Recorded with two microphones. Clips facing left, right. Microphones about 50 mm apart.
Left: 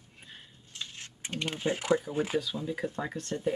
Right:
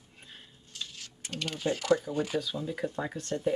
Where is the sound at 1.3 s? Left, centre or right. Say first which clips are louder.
Even; left; by 3.5 s centre.